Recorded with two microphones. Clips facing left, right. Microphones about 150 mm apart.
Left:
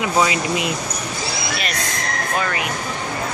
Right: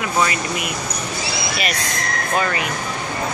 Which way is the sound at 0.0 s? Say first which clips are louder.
Left 2 dB; 20° left (ahead or behind).